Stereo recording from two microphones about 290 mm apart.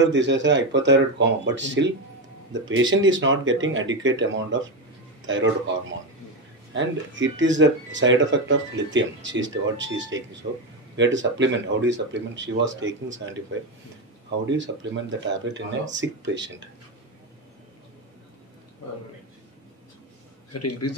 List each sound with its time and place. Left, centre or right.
0.0 s speech: right
6.7 s speech: right
14.4 s speech: right
20.5 s a man's voice: left